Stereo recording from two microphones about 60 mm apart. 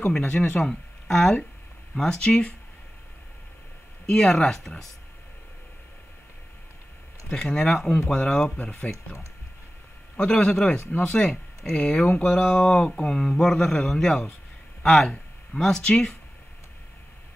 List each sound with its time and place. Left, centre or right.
0.2 s speech: left
0.7 s speech: centre
4.0 s speech: centre
7.3 s speech: centre
10.1 s speech: centre
12.0 s speech: left
12.3 s speech: centre